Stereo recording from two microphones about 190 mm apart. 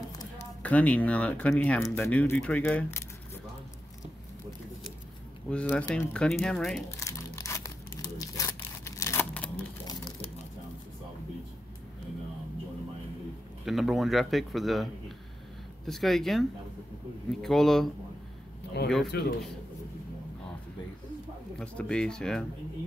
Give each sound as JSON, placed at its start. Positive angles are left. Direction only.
{"t": 0.6, "sound": "speech", "side_deg": 5}
{"t": 5.5, "sound": "a man's voice", "side_deg": 5}
{"t": 7.0, "sound": "crumpling", "side_deg": 15}
{"t": 13.7, "sound": "a man's voice", "side_deg": 0}
{"t": 18.8, "sound": "speech", "side_deg": 65}
{"t": 21.5, "sound": "a man's voice", "side_deg": 5}